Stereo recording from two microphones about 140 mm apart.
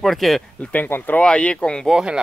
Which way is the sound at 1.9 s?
5° right (ahead or behind).